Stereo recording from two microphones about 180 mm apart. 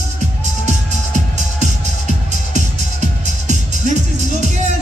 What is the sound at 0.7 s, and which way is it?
Music, 40° right (ahead or behind).